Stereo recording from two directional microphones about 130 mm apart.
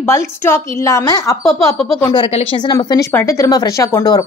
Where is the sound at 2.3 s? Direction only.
45° left (ahead or behind).